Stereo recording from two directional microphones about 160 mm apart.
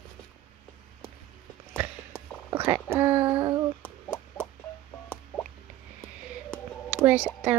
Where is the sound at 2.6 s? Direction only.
15° right (ahead or behind).